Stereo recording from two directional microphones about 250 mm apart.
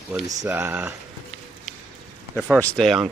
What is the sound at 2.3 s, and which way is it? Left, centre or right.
Speech, centre.